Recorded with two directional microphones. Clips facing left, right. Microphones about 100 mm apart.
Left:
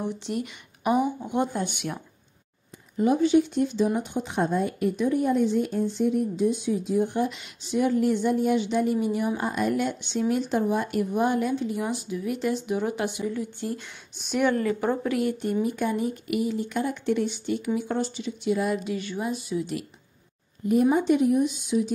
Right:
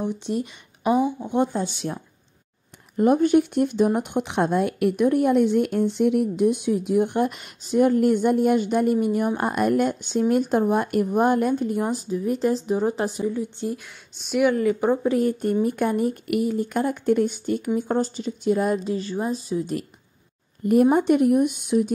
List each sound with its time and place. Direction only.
0.2 s speech: 20° right (ahead or behind)
3.0 s speech: 55° right (ahead or behind); by 13.3 s 35° right (ahead or behind)
13.3 s speech: 20° right (ahead or behind)
13.7 s speech: centre (ahead or behind)
14.7 s speech: 20° right (ahead or behind)
15.0 s a woman's voice: 40° right (ahead or behind)
15.6 s a woman's voice: 55° right (ahead or behind)
20.6 s speech: 55° right (ahead or behind)